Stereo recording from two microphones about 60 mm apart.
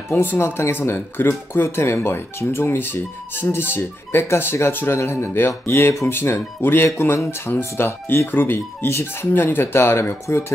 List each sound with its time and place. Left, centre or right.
0.1 s speech: left